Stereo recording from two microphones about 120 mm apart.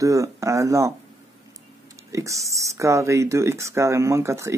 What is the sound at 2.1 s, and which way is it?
Speech, 25° right (ahead or behind).